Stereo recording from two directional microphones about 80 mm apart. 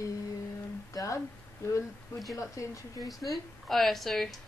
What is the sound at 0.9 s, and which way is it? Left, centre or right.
Speech, left.